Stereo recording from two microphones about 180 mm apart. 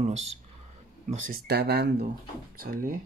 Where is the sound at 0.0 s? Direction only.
40° right (ahead or behind).